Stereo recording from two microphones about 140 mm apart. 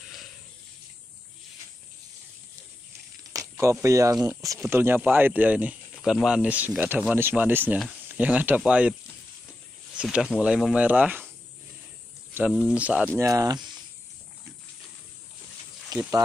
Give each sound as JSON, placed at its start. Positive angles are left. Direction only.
{"t": 3.3, "sound": "a sound", "side_deg": -20}
{"t": 3.8, "sound": "speech", "side_deg": -20}
{"t": 9.9, "sound": "speech", "side_deg": -5}
{"t": 12.5, "sound": "speech", "side_deg": -10}
{"t": 13.2, "sound": "speech", "side_deg": -25}
{"t": 15.9, "sound": "a sound", "side_deg": -30}